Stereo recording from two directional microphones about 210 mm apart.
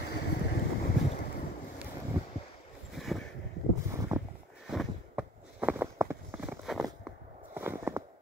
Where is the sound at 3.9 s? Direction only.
15° right (ahead or behind).